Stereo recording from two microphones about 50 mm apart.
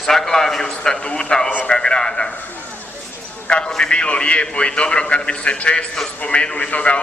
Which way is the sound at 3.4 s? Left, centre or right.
Centre.